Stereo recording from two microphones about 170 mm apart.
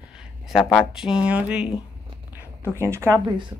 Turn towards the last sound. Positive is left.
turn(degrees=-20)  # may be behind; listen again after turning